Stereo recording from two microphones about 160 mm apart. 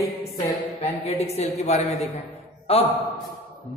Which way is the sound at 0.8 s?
40° left (ahead or behind).